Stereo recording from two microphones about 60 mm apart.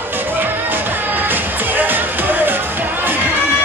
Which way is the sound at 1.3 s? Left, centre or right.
Right.